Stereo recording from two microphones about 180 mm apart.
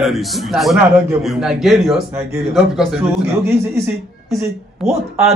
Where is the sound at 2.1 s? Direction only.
15° right (ahead or behind).